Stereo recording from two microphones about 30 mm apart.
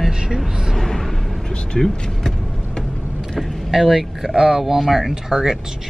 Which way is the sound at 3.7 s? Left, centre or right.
Centre.